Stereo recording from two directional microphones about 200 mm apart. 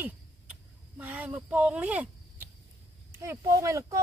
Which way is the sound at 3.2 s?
15° right (ahead or behind).